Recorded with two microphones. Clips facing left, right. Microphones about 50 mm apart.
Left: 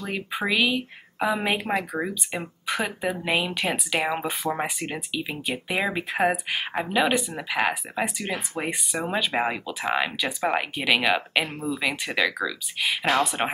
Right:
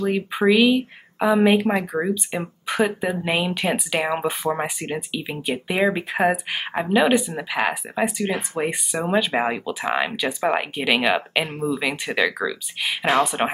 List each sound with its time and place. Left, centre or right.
0.0 s speech: centre